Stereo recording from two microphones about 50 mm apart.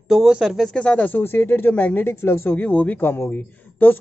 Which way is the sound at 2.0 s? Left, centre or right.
Left.